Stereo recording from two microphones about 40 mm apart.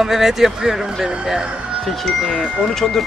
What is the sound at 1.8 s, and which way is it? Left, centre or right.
Speech, centre.